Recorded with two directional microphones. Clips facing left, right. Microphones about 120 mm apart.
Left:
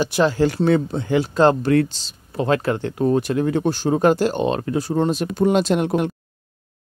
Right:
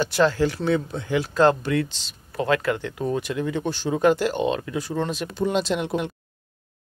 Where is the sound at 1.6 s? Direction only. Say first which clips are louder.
Left 7 dB; 40° left (ahead or behind).